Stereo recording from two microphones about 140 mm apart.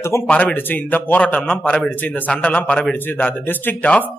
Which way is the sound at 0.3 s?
10° left (ahead or behind).